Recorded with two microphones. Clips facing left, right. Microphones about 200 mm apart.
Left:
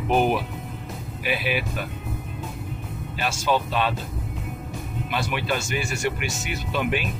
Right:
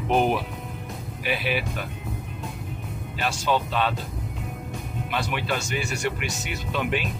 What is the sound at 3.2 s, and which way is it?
Speech, 5° left (ahead or behind).